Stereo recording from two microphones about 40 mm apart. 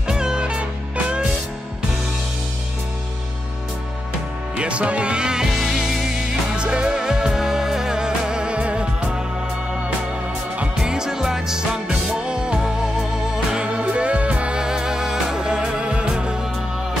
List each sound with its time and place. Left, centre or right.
0.1 s music: centre
4.6 s music: right
5.7 s music: centre
6.1 s music: right
10.8 s music: centre
13.6 s music: right
14.6 s music: centre